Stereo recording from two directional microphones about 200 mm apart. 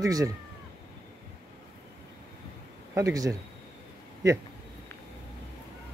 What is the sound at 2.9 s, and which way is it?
Speech, 15° right (ahead or behind).